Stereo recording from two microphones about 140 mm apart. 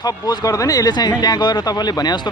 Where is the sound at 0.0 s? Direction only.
30° left (ahead or behind).